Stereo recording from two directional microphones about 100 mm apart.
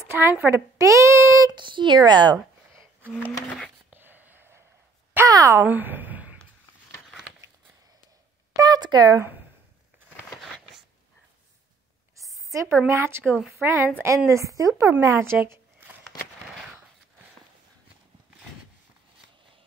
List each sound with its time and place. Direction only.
0.0 s a woman's voice: 25° right (ahead or behind)
0.7 s child singing: 30° right (ahead or behind)
1.5 s speech: 55° right (ahead or behind)
3.9 s a sound: 20° right (ahead or behind)
5.3 s a woman's voice: 35° right (ahead or behind)
5.7 s a woman's voice: 20° right (ahead or behind)
8.5 s speech: 40° right (ahead or behind)
10.3 s a sound: centre (ahead or behind)
12.4 s a sound: 30° right (ahead or behind)
12.8 s a woman's voice: 25° right (ahead or behind)